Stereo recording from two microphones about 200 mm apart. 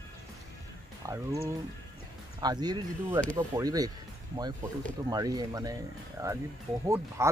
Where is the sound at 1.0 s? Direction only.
15° right (ahead or behind).